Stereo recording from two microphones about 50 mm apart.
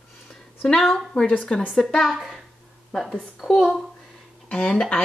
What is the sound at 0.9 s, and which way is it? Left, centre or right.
Speech, centre.